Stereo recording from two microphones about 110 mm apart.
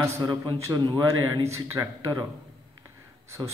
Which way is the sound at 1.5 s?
25° right (ahead or behind).